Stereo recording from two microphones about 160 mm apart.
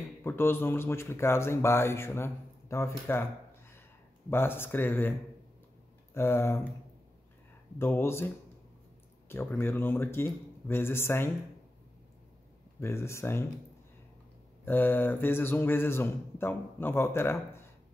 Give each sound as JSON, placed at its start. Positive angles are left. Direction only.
{"t": 0.2, "sound": "speech", "side_deg": 15}
{"t": 4.3, "sound": "speech", "side_deg": 15}
{"t": 6.1, "sound": "speech", "side_deg": 15}
{"t": 7.8, "sound": "speech", "side_deg": 15}
{"t": 9.3, "sound": "speech", "side_deg": 15}
{"t": 12.8, "sound": "speech", "side_deg": 15}
{"t": 14.6, "sound": "speech", "side_deg": 10}